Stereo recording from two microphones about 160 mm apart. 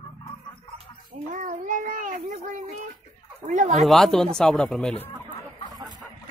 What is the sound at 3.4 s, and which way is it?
Speech, 50° right (ahead or behind).